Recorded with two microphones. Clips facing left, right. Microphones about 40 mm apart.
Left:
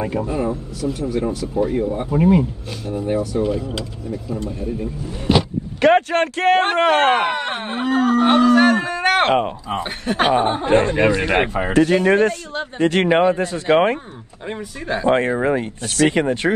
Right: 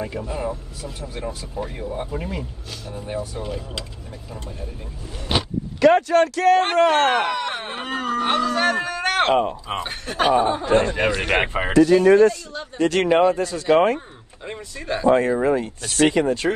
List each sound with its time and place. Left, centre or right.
0.0 s speech: left
0.9 s speech: left
1.5 s speech: left
2.1 s speech: left
5.8 s speech: left
8.9 s a sound: left
10.1 s speech: left
11.2 s speech: right
11.7 s speech: left
12.7 s speech: left
14.4 s a man's voice: centre
15.0 s speech: left